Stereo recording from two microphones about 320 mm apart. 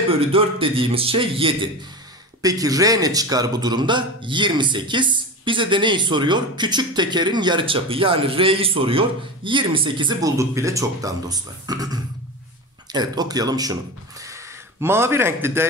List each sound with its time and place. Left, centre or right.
0.3 s a man's voice: centre